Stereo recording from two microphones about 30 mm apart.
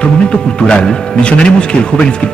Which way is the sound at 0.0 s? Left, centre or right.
Left.